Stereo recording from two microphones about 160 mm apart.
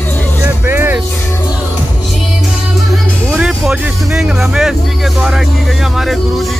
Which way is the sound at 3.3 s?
5° right (ahead or behind).